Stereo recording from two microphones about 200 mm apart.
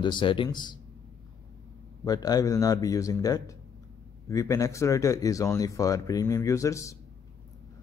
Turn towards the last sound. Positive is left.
turn(degrees=15)  # may be behind; listen again after turning